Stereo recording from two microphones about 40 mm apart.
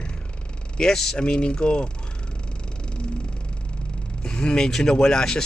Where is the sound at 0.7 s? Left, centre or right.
Centre.